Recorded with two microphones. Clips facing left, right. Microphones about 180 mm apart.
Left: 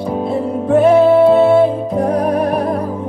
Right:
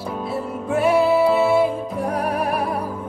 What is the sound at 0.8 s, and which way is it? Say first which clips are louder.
Music: left 7 dB; 10° right (ahead or behind).